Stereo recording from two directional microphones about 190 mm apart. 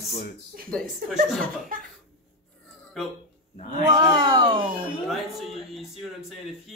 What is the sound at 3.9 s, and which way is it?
Speech, 25° right (ahead or behind).